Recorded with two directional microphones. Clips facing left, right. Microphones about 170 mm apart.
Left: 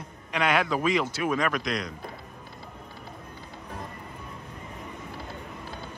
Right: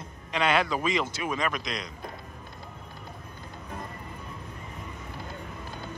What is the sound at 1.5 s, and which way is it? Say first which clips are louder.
Speech: left 5 dB; 55° left (ahead or behind).